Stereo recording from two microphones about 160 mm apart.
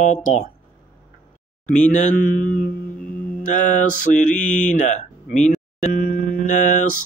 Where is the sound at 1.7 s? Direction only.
50° left (ahead or behind).